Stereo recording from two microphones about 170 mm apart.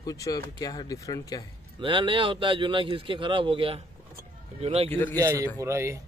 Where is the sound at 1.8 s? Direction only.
30° right (ahead or behind).